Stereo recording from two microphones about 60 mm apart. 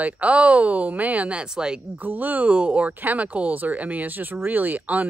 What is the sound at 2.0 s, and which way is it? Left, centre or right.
Speech, right.